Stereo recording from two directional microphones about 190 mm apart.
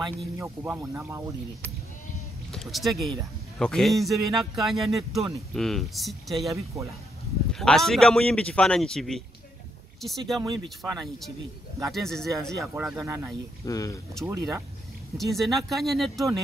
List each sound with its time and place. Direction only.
0.4 s speech: 10° right (ahead or behind)
2.5 s a man's voice: centre (ahead or behind)
6.5 s speech: 15° right (ahead or behind)
7.5 s a man's voice: centre (ahead or behind)
12.5 s speech: 15° right (ahead or behind)
13.7 s speech: 20° left (ahead or behind)
14.2 s speech: 15° right (ahead or behind)
15.1 s a man's voice: centre (ahead or behind)